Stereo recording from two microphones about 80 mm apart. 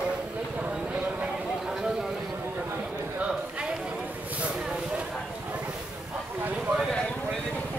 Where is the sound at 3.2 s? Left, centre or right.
Centre.